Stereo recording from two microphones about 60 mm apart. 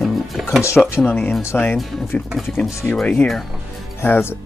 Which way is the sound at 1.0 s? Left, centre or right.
Left.